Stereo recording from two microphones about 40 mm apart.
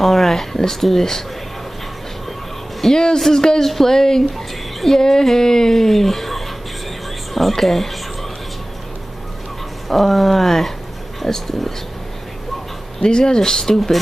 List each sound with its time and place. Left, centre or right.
0.0 s speech: centre
2.8 s speech: centre
9.8 s speech: centre
13.0 s speech: centre